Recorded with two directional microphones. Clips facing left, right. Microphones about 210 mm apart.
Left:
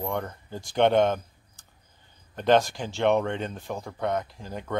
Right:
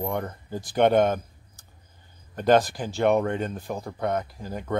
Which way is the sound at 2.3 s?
5° right (ahead or behind).